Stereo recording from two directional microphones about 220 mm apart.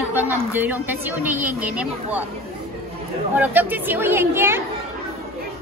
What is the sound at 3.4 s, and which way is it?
A woman's voice, 10° right (ahead or behind).